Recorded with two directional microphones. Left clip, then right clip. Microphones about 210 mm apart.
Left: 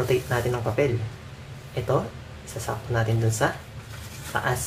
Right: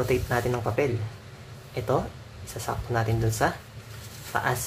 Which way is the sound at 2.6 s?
20° right (ahead or behind).